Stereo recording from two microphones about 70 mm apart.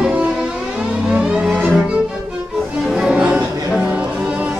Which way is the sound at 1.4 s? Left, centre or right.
Centre.